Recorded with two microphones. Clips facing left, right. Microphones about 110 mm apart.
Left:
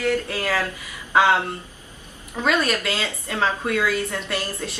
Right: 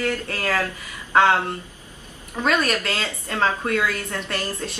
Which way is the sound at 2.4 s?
10° left (ahead or behind).